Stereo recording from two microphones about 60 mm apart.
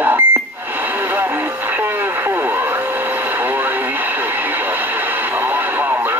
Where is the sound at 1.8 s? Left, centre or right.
Right.